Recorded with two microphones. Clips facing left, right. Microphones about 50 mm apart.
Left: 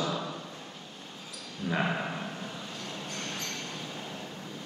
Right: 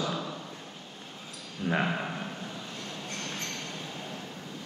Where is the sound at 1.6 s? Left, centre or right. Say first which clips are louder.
Right 3 dB; right.